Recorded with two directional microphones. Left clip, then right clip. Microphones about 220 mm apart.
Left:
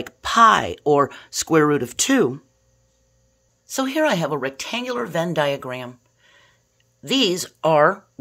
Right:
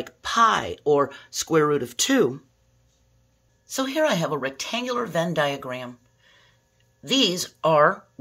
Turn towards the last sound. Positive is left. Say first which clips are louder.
# left 2 dB
turn(degrees=35)  # may be behind; listen again after turning